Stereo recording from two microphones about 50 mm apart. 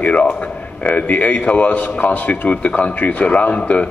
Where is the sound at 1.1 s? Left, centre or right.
Left.